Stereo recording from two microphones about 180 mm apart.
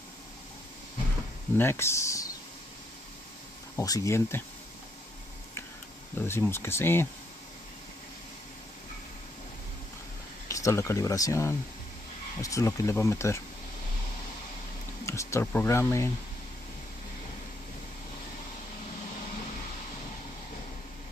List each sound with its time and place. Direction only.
1.6 s speech: 15° left (ahead or behind)
3.7 s speech: 20° left (ahead or behind)
6.1 s speech: 10° left (ahead or behind)
10.5 s speech: 15° left (ahead or behind)
15.0 s speech: 15° left (ahead or behind)